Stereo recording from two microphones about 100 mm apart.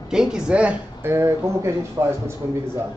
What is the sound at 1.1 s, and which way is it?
Speech, 30° right (ahead or behind).